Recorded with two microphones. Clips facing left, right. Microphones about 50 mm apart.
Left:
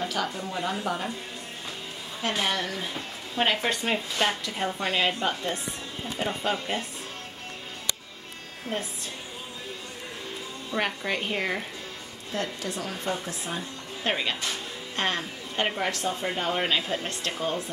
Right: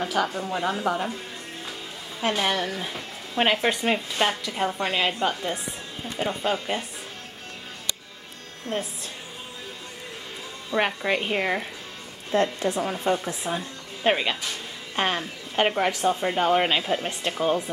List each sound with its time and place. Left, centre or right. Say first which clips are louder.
0.0 s a woman's voice: right 4 dB; centre
2.4 s a woman's voice: right 3 dB; centre
10.7 s a woman's voice: right 5 dB; right
12.3 s a woman's voice: right 8 dB; right; by 17.6 s centre